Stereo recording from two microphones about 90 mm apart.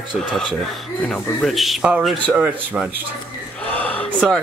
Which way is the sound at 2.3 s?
20° right (ahead or behind).